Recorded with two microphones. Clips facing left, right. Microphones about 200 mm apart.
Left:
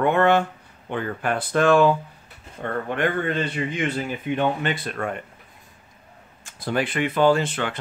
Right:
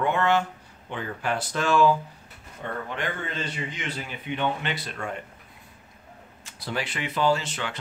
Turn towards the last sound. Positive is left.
turn(degrees=55)  # may be behind; listen again after turning